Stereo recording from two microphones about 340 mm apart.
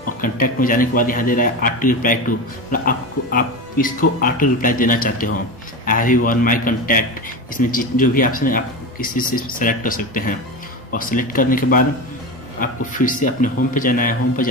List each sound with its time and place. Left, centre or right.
0.2 s a man's voice: left